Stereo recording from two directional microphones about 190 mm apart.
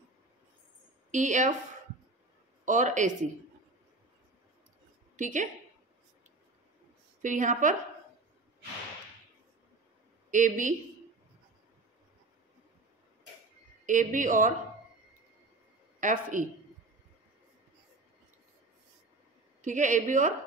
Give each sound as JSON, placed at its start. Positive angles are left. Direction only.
{"t": 1.1, "sound": "a woman's voice", "side_deg": -40}
{"t": 2.6, "sound": "a woman's voice", "side_deg": -40}
{"t": 5.1, "sound": "a woman's voice", "side_deg": -40}
{"t": 7.2, "sound": "a man's voice", "side_deg": -40}
{"t": 10.3, "sound": "a woman's voice", "side_deg": -40}
{"t": 13.8, "sound": "a man's voice", "side_deg": -40}
{"t": 16.0, "sound": "a man's voice", "side_deg": -45}
{"t": 19.6, "sound": "a woman's voice", "side_deg": -40}